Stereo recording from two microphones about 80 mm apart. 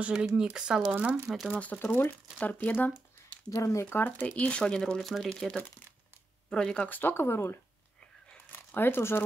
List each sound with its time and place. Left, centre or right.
0.0 s speech: centre
1.6 s speech: left
3.4 s speech: left
3.8 s speech: left; by 5.3 s centre
6.5 s speech: centre
6.9 s speech: left